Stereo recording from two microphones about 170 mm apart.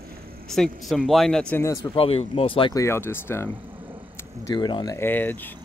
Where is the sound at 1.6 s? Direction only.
15° left (ahead or behind).